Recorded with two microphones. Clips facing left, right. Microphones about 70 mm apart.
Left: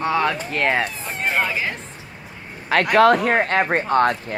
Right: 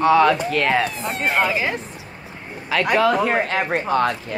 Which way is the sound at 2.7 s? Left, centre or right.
Left.